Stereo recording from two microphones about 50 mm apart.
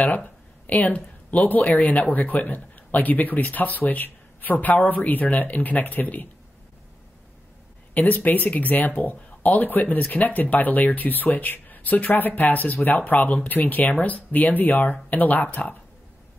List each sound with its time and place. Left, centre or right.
0.0 s speech: left
7.9 s speech: left